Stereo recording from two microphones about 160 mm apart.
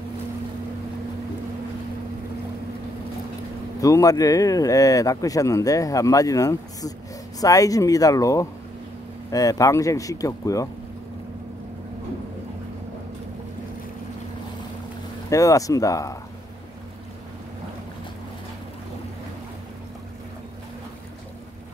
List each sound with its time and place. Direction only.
3.8 s speech: 20° left (ahead or behind)
15.2 s speech: 20° left (ahead or behind)